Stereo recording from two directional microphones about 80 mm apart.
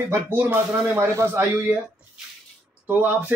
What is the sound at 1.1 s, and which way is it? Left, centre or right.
Speech, right.